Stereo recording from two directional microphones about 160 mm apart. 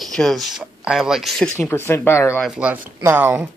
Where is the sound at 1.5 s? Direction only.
15° left (ahead or behind).